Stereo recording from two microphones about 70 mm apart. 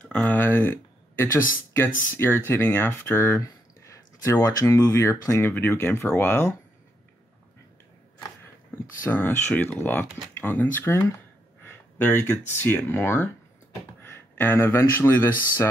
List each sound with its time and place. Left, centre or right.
0.3 s speech: left
3.3 s speech: left
5.5 s speech: left
9.1 s speech: left